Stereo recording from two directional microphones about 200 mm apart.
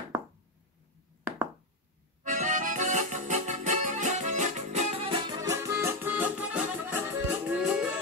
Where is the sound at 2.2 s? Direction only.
40° right (ahead or behind).